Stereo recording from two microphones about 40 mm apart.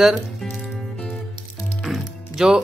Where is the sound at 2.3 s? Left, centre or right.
Centre.